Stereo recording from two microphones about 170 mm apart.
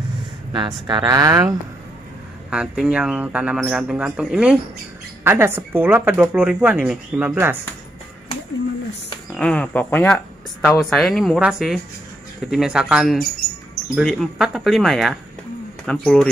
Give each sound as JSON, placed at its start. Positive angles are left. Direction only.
{"t": 0.5, "sound": "speech", "side_deg": -25}
{"t": 2.5, "sound": "speech", "side_deg": -5}
{"t": 9.3, "sound": "speech", "side_deg": 5}